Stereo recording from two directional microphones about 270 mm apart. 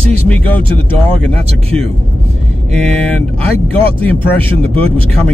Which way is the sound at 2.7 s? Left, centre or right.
Centre.